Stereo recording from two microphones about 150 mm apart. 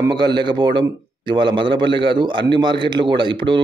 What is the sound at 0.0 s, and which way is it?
A man's voice, 30° right (ahead or behind).